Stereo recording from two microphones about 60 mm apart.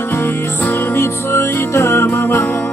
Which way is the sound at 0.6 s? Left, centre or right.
Left.